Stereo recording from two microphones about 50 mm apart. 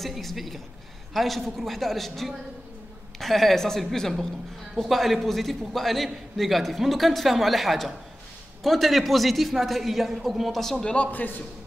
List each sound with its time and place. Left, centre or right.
0.0 s a man's voice: centre
11.1 s a man's voice: left